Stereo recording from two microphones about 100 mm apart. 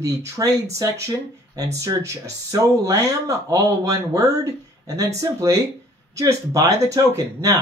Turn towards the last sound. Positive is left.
turn(degrees=-35)  # may be behind; listen again after turning